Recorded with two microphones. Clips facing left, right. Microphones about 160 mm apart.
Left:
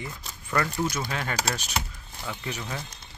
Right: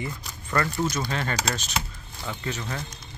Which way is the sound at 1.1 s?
10° left (ahead or behind).